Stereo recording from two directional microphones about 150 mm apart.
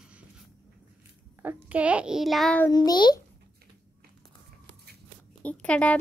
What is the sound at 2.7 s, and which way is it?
Speech, 30° left (ahead or behind).